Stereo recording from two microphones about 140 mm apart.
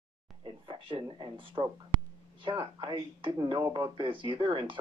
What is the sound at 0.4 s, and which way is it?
Speech, 35° right (ahead or behind).